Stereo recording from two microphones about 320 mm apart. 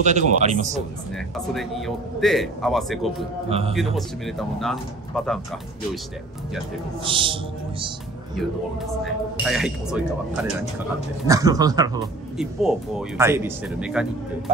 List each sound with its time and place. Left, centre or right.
0.0 s speech: right
1.1 s a man's voice: centre
3.4 s speech: centre
3.7 s a man's voice: centre
7.1 s a man's voice: centre
9.0 s a man's voice: centre